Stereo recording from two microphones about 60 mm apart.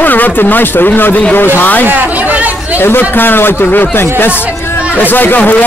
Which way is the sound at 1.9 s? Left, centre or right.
Right.